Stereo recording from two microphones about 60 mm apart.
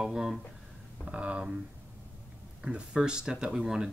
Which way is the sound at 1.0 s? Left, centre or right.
Centre.